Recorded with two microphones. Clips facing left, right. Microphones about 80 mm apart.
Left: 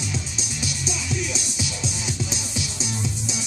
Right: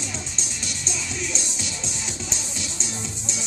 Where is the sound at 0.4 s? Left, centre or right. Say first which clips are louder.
Left 4 dB; centre.